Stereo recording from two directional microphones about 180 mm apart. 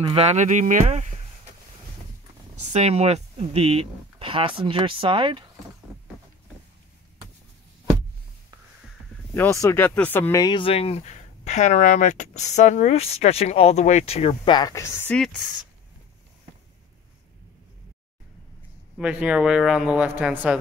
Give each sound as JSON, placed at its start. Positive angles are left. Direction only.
{"t": 0.0, "sound": "speech", "side_deg": -35}
{"t": 2.5, "sound": "speech", "side_deg": -40}
{"t": 9.3, "sound": "speech", "side_deg": 15}
{"t": 10.4, "sound": "speech", "side_deg": 25}
{"t": 18.9, "sound": "speech", "side_deg": -5}